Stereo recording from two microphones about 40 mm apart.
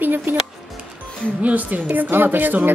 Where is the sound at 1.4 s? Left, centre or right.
Right.